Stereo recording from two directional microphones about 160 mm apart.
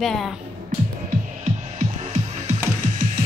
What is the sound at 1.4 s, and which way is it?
Music, 45° right (ahead or behind).